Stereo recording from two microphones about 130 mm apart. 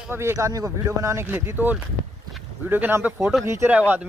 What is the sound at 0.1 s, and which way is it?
Speech, 20° right (ahead or behind).